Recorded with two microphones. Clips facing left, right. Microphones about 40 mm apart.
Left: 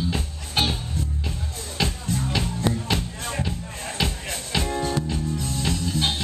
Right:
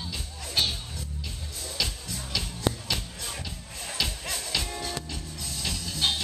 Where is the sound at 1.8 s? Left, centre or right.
Left.